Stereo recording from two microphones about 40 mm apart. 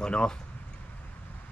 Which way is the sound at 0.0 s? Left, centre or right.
Left.